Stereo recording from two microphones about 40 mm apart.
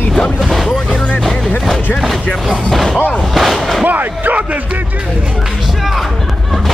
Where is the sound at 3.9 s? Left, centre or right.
Right.